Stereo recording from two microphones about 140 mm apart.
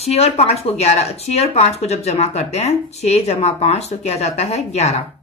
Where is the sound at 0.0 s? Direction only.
50° left (ahead or behind).